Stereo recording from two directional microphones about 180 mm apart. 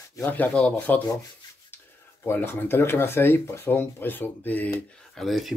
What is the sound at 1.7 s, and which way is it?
Speech, 10° left (ahead or behind).